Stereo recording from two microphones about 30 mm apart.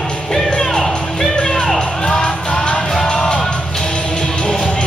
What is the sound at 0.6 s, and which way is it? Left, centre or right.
Music, centre.